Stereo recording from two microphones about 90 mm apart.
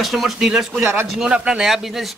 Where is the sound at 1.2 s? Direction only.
5° right (ahead or behind).